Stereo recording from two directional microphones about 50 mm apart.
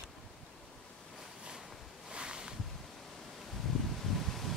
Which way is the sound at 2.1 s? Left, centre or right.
Centre.